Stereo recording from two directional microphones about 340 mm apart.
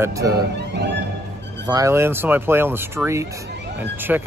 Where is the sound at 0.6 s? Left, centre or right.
Right.